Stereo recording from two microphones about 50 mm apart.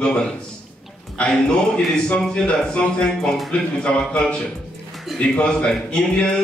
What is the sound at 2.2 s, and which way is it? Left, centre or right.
Speech, centre.